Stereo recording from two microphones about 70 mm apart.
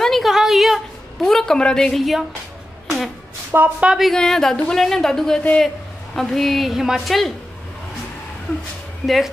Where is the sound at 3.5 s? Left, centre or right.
Right.